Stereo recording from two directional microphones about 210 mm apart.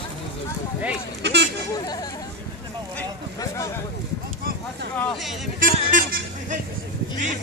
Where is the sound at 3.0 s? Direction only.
15° left (ahead or behind).